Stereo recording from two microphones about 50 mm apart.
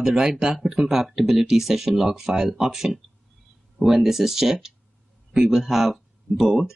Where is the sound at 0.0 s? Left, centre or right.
Centre.